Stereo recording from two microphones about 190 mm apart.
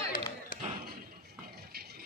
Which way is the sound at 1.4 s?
55° right (ahead or behind).